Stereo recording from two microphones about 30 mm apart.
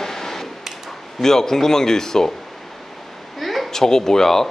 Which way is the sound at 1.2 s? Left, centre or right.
Centre.